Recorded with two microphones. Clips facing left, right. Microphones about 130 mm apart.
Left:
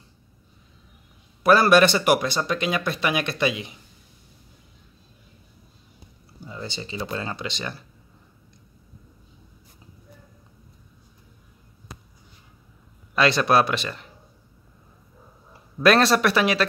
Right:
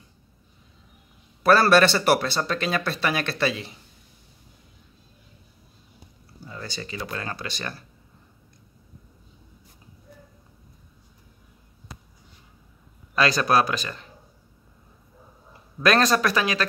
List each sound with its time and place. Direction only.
1.4 s speech: 15° left (ahead or behind)
6.4 s speech: 20° left (ahead or behind)
13.1 s speech: 25° left (ahead or behind)
15.8 s speech: 30° left (ahead or behind)